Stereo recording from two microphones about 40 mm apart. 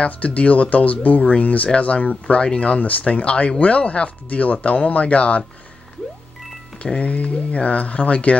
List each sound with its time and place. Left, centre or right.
0.0 s speech: left
6.8 s speech: left